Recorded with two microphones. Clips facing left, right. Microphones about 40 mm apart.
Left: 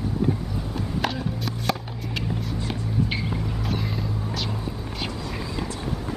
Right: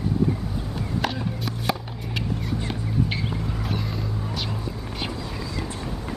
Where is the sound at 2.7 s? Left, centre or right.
Centre.